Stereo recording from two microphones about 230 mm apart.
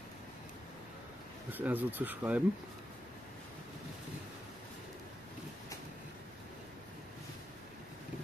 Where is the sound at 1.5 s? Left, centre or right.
Centre.